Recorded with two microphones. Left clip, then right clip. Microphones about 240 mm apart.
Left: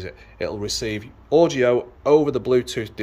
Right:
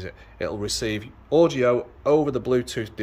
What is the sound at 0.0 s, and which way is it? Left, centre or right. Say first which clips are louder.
Speech: left 2 dB; centre.